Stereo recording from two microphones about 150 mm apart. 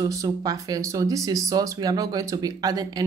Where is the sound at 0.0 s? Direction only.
25° right (ahead or behind).